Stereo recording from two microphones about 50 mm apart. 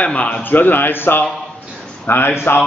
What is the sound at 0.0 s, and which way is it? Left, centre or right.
A man's voice, left.